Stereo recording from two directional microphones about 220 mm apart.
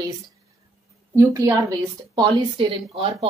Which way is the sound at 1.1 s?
15° right (ahead or behind).